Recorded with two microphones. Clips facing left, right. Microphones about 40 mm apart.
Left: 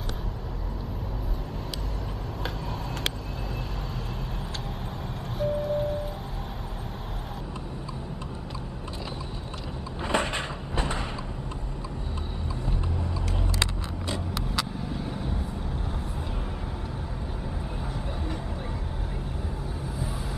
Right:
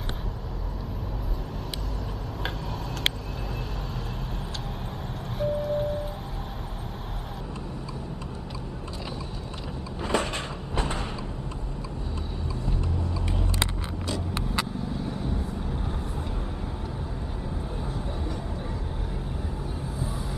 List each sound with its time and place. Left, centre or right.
5.4 s music: centre
10.0 s cupboard open or close: left